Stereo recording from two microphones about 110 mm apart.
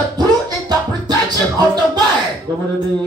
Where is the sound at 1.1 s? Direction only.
40° right (ahead or behind).